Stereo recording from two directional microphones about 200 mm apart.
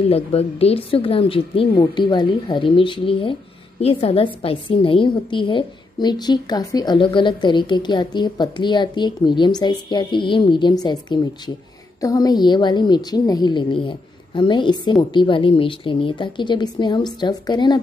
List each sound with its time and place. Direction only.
0.1 s a woman's voice: 30° left (ahead or behind)